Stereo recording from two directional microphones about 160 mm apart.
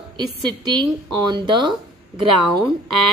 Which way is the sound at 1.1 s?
25° right (ahead or behind).